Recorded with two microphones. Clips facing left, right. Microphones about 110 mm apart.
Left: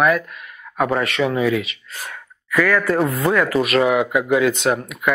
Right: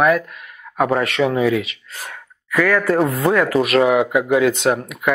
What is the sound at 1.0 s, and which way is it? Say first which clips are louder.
Speech: right 2 dB; 50° right (ahead or behind).